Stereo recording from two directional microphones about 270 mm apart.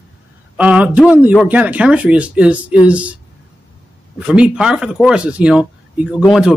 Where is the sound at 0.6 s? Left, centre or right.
Centre.